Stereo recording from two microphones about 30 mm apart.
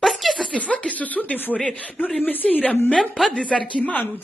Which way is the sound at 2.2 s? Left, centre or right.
Left.